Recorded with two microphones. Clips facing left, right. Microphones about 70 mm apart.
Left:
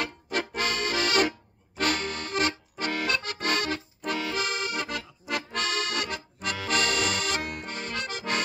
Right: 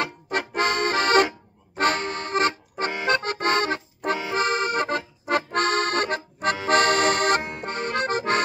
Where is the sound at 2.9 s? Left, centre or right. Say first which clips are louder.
Right 5 dB; centre.